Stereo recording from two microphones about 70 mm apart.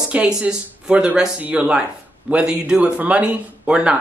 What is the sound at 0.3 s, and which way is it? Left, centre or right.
Speech, centre.